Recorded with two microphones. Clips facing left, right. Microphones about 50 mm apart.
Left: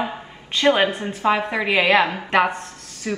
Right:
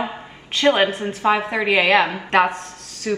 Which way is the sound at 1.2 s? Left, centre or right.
Centre.